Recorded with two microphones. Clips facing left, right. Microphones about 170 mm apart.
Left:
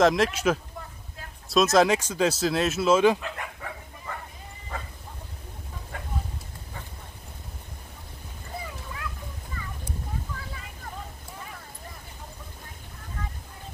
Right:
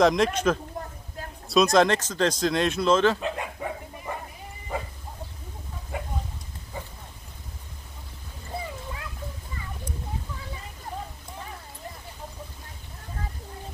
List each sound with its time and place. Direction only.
0.0 s speech: 5° left (ahead or behind)
3.2 s dog: 20° right (ahead or behind)
4.7 s bow-wow: 10° right (ahead or behind)
5.9 s a sound: 15° right (ahead or behind)